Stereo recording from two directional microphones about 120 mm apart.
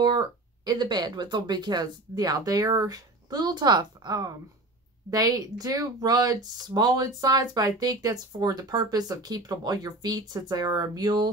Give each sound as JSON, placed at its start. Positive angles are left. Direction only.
{"t": 0.0, "sound": "speech", "side_deg": -35}